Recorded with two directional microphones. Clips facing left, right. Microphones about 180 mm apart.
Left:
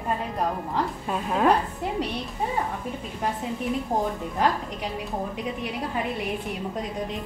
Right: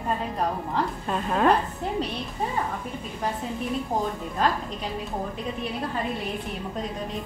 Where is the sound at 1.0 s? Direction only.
5° left (ahead or behind).